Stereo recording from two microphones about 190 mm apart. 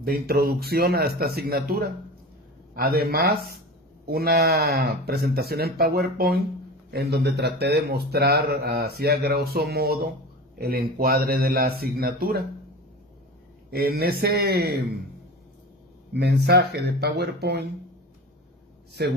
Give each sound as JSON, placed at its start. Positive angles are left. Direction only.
{"t": 0.0, "sound": "a man's voice", "side_deg": -55}
{"t": 13.7, "sound": "a man's voice", "side_deg": -55}
{"t": 16.1, "sound": "a man's voice", "side_deg": -60}
{"t": 19.0, "sound": "a man's voice", "side_deg": -60}